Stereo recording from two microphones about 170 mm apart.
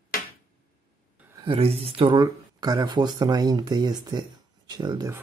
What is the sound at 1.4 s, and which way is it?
Speech, 35° right (ahead or behind).